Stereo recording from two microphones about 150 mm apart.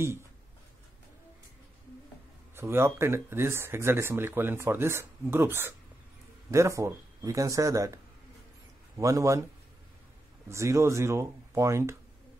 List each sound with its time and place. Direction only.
0.0 s speech: 15° right (ahead or behind)
2.5 s speech: 15° right (ahead or behind)
10.5 s speech: 20° right (ahead or behind)